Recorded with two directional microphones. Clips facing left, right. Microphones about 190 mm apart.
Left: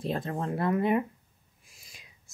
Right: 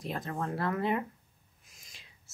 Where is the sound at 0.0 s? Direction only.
30° left (ahead or behind).